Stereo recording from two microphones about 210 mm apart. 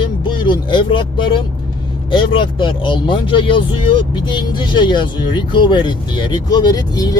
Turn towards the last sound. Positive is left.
turn(degrees=15)  # may be behind; listen again after turning